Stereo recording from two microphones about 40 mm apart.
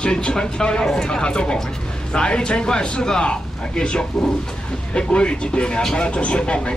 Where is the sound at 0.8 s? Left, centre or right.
Centre.